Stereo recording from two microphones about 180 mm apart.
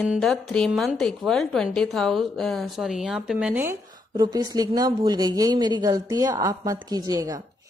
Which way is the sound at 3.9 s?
20° right (ahead or behind).